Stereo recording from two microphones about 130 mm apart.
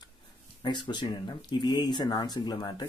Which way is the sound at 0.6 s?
35° left (ahead or behind).